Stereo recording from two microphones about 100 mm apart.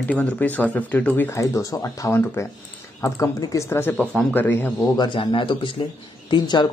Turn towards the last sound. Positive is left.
turn(degrees=50)  # may be behind; listen again after turning